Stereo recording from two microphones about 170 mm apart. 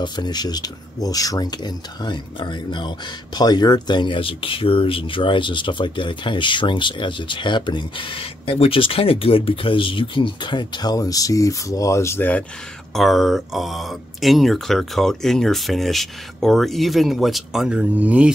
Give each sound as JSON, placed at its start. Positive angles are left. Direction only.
{"t": 0.0, "sound": "speech", "side_deg": 25}